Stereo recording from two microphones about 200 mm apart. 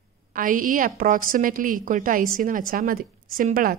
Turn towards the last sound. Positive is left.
turn(degrees=-45)  # may be behind; listen again after turning